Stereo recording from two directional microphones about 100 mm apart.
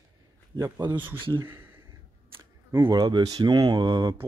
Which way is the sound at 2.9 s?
45° right (ahead or behind).